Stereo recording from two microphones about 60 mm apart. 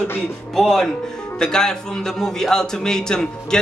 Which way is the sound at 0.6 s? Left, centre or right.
Centre.